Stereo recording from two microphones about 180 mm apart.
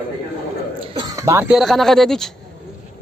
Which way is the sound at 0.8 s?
30° right (ahead or behind).